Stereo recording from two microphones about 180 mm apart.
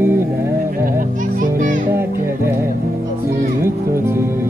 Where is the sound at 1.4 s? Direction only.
45° right (ahead or behind).